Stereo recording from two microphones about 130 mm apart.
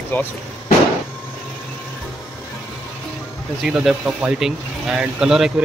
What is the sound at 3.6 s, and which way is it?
Speech, 5° right (ahead or behind).